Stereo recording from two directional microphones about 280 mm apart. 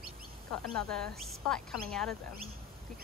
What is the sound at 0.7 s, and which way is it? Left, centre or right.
Speech, centre.